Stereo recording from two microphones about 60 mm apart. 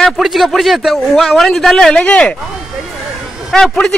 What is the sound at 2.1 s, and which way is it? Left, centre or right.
Speech, centre.